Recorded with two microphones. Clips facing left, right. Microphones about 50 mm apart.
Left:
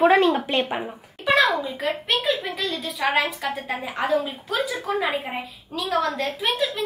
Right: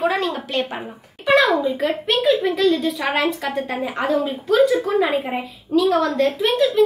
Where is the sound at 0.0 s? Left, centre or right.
Left.